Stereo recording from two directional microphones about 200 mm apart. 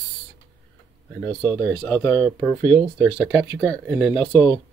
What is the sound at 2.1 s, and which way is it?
Speech, 20° right (ahead or behind).